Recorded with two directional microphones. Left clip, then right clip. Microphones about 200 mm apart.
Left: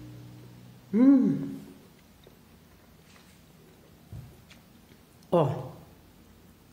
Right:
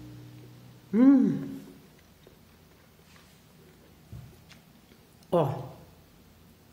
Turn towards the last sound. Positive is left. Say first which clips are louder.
# left 1 dB
turn(degrees=5)  # may be behind; listen again after turning